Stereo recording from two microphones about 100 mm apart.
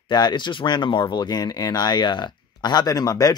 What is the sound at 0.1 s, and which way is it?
Speech, 45° left (ahead or behind).